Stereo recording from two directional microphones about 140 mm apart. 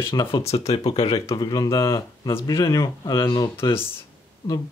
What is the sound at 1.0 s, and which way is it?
Speech, 30° left (ahead or behind).